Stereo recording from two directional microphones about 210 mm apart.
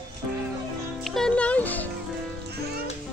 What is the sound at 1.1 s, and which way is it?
Music, 5° left (ahead or behind).